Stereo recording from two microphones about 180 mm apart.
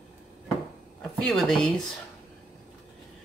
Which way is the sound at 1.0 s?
5° left (ahead or behind).